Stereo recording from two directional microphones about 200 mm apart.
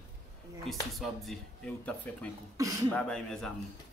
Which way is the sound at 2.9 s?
5° left (ahead or behind).